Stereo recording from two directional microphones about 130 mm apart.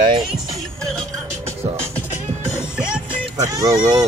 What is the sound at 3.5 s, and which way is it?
Speech, 25° right (ahead or behind).